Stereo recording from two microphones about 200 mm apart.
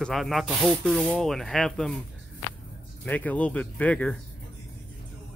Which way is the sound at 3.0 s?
10° left (ahead or behind).